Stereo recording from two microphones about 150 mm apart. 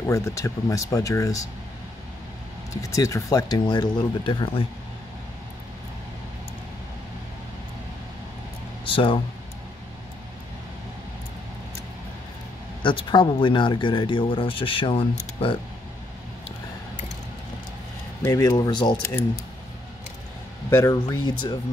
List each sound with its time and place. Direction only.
0.0 s speech: 20° left (ahead or behind)
2.7 s speech: 20° left (ahead or behind)
8.8 s speech: 35° left (ahead or behind)
12.8 s speech: 30° left (ahead or behind)
18.2 s speech: 25° left (ahead or behind)
20.7 s speech: 20° left (ahead or behind)